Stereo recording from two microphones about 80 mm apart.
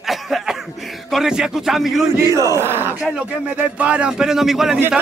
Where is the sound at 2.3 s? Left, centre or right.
Right.